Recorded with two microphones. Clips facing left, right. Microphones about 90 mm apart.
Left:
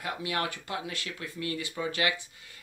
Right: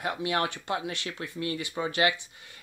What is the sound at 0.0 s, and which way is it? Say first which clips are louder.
Speech: right 4 dB; 25° right (ahead or behind).